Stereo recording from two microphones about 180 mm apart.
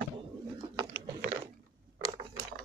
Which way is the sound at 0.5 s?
15° right (ahead or behind).